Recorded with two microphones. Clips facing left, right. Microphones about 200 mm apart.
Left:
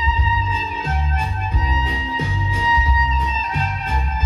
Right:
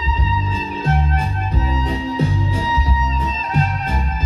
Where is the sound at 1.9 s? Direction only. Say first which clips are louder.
Right 6 dB; 40° right (ahead or behind).